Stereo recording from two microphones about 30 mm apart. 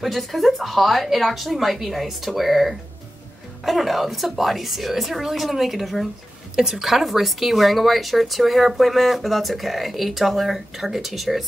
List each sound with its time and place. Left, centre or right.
0.0 s a woman's voice: centre
6.9 s speech: centre